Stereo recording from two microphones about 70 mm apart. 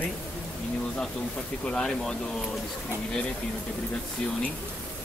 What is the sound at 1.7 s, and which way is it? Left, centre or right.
Speech, centre.